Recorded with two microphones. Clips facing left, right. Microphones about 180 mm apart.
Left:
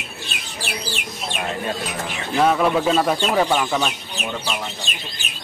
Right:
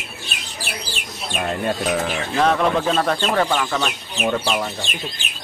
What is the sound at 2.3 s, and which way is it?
Speech, 5° left (ahead or behind).